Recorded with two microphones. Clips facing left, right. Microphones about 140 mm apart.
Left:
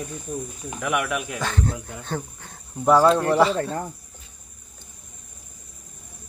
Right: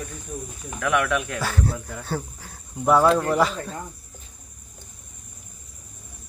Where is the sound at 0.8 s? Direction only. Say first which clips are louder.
Right 2 dB; 15° left (ahead or behind).